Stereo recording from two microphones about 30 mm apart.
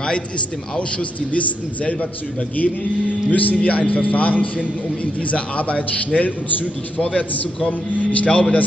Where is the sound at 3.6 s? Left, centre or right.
Left.